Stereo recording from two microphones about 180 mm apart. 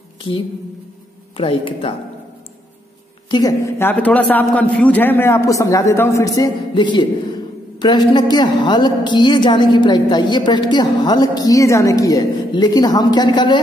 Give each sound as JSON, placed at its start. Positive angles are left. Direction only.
{"t": 1.3, "sound": "a woman's voice", "side_deg": 30}
{"t": 3.3, "sound": "a woman's voice", "side_deg": 20}